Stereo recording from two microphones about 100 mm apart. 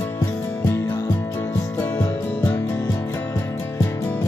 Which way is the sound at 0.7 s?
25° left (ahead or behind).